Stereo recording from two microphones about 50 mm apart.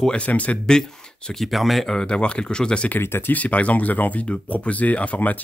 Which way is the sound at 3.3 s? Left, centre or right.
Left.